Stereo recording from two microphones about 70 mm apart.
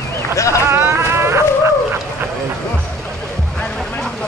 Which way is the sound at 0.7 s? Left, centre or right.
Right.